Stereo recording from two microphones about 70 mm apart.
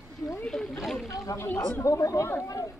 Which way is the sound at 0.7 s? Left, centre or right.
Centre.